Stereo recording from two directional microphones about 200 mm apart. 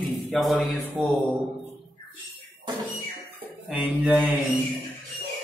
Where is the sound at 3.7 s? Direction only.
5° right (ahead or behind).